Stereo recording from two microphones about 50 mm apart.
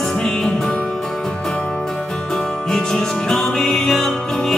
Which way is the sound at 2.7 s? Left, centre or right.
Centre.